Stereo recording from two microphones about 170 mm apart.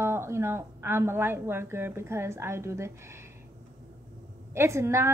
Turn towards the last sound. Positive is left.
turn(degrees=-15)  # may be behind; listen again after turning